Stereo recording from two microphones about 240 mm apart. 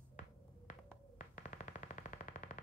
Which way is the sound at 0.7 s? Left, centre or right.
Left.